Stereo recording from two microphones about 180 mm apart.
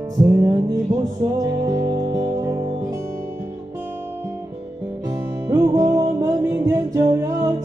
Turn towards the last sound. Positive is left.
turn(degrees=-20)  # may be behind; listen again after turning